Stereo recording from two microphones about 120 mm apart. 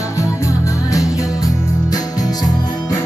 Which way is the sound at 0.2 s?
25° left (ahead or behind).